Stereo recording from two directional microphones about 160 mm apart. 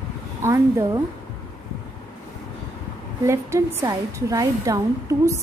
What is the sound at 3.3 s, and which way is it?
A woman's voice, 20° right (ahead or behind).